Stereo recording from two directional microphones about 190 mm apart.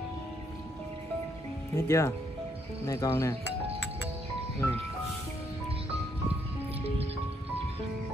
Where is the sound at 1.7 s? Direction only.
15° left (ahead or behind).